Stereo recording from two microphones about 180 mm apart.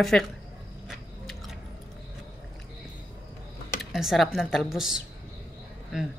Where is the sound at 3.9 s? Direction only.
Centre (ahead or behind).